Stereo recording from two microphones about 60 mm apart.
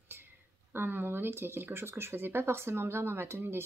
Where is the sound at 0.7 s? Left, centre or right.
Right.